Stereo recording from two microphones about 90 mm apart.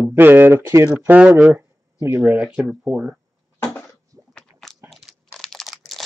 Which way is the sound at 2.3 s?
10° right (ahead or behind).